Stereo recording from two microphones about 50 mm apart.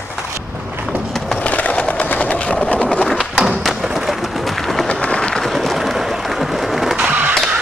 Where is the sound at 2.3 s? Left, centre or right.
Left.